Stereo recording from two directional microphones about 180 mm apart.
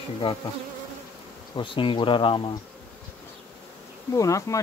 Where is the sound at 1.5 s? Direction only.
30° left (ahead or behind).